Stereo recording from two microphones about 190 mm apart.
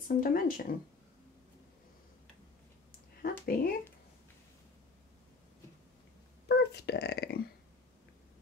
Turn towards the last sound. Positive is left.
turn(degrees=60)  # may be behind; listen again after turning